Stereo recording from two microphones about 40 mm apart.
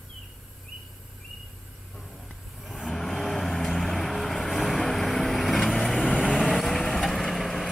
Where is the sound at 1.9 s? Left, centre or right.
Centre.